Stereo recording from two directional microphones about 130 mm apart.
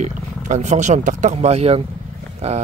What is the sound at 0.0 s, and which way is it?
Speech, 65° right (ahead or behind).